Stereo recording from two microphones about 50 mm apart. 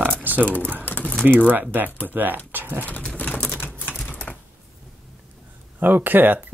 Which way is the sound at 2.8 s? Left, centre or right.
Left.